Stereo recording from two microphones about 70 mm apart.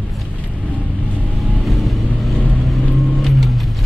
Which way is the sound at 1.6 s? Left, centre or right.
Centre.